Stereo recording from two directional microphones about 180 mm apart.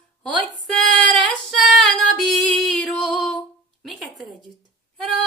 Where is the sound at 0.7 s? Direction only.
5° left (ahead or behind).